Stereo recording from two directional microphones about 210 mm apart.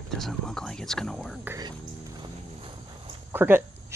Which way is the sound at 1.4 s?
15° right (ahead or behind).